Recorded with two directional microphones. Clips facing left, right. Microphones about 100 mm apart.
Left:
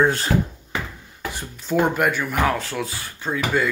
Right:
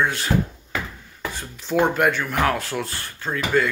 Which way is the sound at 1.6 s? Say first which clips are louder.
Even; centre (ahead or behind).